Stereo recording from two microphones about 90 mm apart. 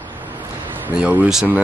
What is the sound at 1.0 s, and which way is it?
Speech, 10° right (ahead or behind).